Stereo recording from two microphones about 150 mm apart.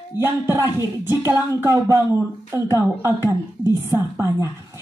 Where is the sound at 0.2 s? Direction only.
15° right (ahead or behind).